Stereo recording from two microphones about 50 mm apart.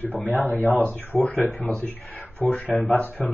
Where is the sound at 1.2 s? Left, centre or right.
Left.